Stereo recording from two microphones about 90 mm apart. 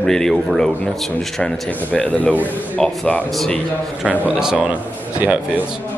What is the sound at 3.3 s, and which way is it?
Speech, 5° left (ahead or behind).